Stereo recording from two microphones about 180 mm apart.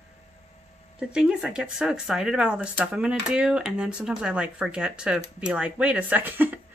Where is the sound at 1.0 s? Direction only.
5° right (ahead or behind).